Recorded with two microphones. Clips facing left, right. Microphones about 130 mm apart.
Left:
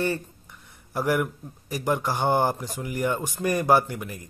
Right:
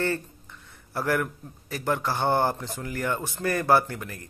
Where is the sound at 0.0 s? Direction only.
15° left (ahead or behind).